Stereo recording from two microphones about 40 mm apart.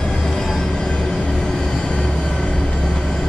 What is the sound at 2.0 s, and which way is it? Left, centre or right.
Music, centre.